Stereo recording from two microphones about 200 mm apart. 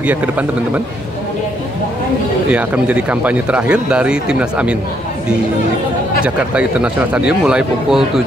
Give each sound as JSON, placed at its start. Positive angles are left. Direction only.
{"t": 0.0, "sound": "speech", "side_deg": -5}
{"t": 2.5, "sound": "speech", "side_deg": -5}
{"t": 6.2, "sound": "speech", "side_deg": -5}